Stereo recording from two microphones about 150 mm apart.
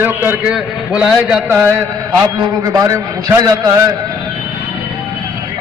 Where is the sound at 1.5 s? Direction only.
15° right (ahead or behind).